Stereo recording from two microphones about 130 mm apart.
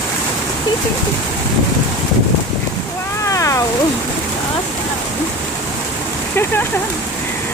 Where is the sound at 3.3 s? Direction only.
25° left (ahead or behind).